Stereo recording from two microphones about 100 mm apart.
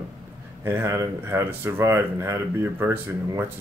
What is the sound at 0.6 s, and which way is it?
Speech, 25° right (ahead or behind).